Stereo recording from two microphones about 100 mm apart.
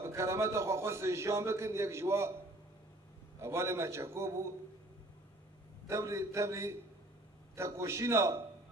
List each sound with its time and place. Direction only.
0.0 s a man's voice: 30° right (ahead or behind)
3.3 s a man's voice: 25° right (ahead or behind)
5.9 s a man's voice: 30° right (ahead or behind)